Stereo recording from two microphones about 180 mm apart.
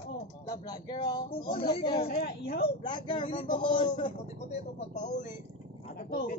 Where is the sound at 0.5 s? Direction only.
25° left (ahead or behind).